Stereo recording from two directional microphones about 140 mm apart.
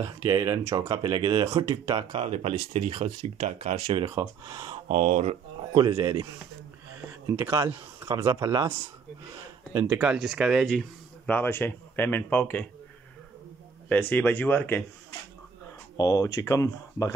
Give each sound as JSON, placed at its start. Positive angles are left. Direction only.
{"t": 0.0, "sound": "speech", "side_deg": -30}
{"t": 2.1, "sound": "speech", "side_deg": -45}
{"t": 3.3, "sound": "speech", "side_deg": -55}
{"t": 3.7, "sound": "speech", "side_deg": -40}
{"t": 4.0, "sound": "speech", "side_deg": -25}
{"t": 4.8, "sound": "speech", "side_deg": -60}
{"t": 5.7, "sound": "speech", "side_deg": -30}
{"t": 7.2, "sound": "speech", "side_deg": -20}
{"t": 9.8, "sound": "speech", "side_deg": -5}
{"t": 13.8, "sound": "speech", "side_deg": 10}
{"t": 16.0, "sound": "speech", "side_deg": 25}